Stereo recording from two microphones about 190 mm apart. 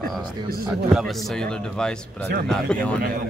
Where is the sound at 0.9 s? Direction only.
Centre (ahead or behind).